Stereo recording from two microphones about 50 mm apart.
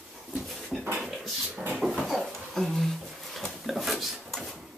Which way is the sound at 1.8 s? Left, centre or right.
Centre.